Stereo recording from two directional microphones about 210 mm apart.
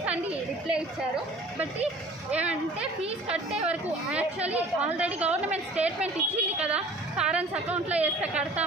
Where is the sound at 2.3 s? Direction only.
5° right (ahead or behind).